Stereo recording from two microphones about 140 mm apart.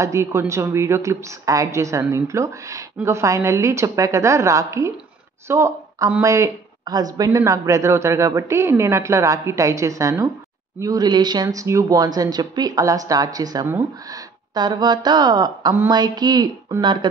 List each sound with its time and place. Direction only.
0.0 s a woman's voice: 20° right (ahead or behind)
13.7 s speech: 15° right (ahead or behind)
14.5 s a woman's voice: 30° right (ahead or behind)